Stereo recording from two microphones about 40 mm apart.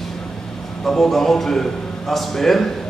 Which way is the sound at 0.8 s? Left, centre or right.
Centre.